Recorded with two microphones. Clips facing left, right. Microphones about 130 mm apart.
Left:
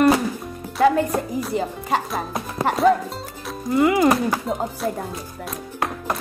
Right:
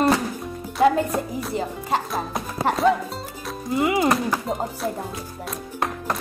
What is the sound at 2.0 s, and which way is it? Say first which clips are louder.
Speech: even; centre (ahead or behind).